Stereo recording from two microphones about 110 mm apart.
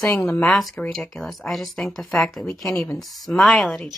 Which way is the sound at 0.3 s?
5° left (ahead or behind).